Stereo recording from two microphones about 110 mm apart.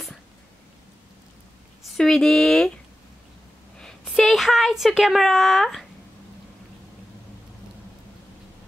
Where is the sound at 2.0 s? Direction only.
5° left (ahead or behind).